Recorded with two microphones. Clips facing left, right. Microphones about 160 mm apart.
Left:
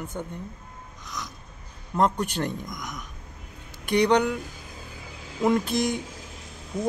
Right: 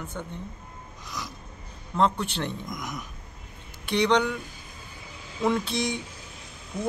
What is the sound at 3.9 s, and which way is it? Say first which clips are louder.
Speech: left 2 dB; 10° left (ahead or behind).